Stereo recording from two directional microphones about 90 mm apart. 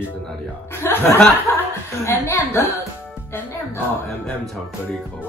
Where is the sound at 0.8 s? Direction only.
25° left (ahead or behind).